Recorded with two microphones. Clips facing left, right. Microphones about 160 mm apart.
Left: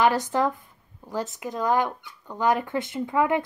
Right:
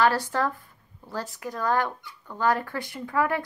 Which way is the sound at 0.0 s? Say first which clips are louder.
Left 2 dB; 20° left (ahead or behind).